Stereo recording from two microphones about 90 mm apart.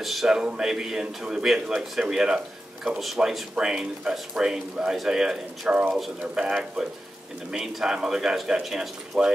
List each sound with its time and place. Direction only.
0.0 s a man's voice: centre (ahead or behind)